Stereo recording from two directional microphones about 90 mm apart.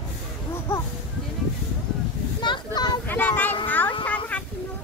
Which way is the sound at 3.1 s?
20° left (ahead or behind).